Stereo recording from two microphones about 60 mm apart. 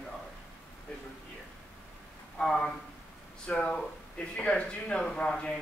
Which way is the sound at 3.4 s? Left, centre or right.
Centre.